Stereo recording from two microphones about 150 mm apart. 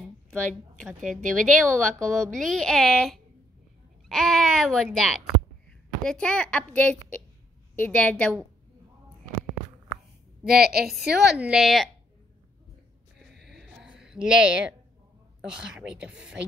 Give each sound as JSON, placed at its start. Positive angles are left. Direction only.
{"t": 1.1, "sound": "a woman's voice", "side_deg": 5}
{"t": 10.5, "sound": "a woman's voice", "side_deg": -90}
{"t": 11.3, "sound": "a woman's voice", "side_deg": -5}
{"t": 13.7, "sound": "a sound", "side_deg": -5}
{"t": 15.4, "sound": "a woman's voice", "side_deg": -5}